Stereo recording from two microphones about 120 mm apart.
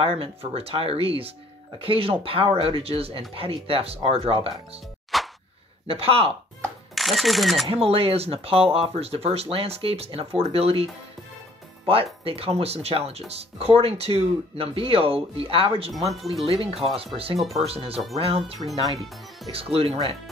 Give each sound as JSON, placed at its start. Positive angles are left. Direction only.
{"t": 0.0, "sound": "speech", "side_deg": -55}
{"t": 5.1, "sound": "a sound", "side_deg": 0}
{"t": 5.9, "sound": "speech", "side_deg": -55}
{"t": 7.0, "sound": "speech", "side_deg": 0}
{"t": 7.7, "sound": "speech", "side_deg": -55}
{"t": 17.4, "sound": "speech", "side_deg": 0}
{"t": 17.6, "sound": "speech", "side_deg": -55}